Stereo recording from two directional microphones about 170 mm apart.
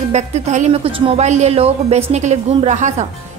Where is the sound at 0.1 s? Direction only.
40° right (ahead or behind).